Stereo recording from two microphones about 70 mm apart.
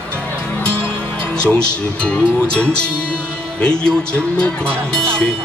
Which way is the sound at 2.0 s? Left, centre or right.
Centre.